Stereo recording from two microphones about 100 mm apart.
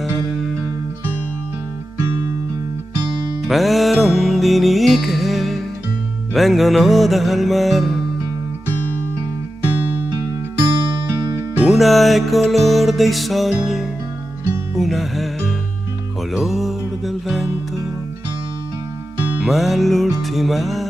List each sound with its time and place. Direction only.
3.4 s music: centre (ahead or behind)
11.6 s music: centre (ahead or behind)
19.4 s music: centre (ahead or behind)